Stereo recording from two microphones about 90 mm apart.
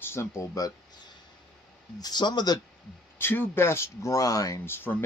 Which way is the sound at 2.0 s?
50° left (ahead or behind).